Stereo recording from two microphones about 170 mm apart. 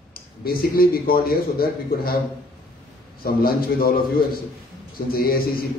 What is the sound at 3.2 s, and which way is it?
Speech, 60° left (ahead or behind).